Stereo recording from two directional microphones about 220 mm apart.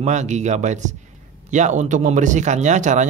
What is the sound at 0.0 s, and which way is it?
Speech, 30° right (ahead or behind).